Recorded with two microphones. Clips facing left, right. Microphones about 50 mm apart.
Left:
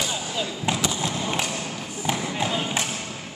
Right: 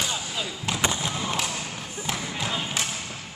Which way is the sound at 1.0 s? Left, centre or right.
Centre.